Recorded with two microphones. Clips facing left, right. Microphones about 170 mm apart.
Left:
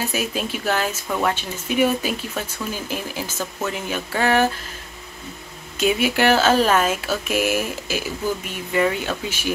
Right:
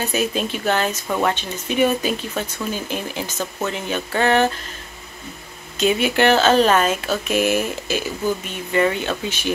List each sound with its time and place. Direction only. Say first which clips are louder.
0.0 s speech: right 3 dB; 5° left (ahead or behind)
5.8 s speech: right 2 dB; 10° left (ahead or behind)